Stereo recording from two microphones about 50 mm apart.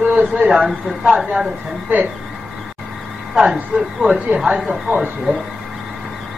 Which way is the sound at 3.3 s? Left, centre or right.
Centre.